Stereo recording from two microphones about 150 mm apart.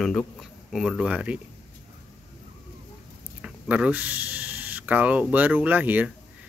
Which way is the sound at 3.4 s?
5° right (ahead or behind).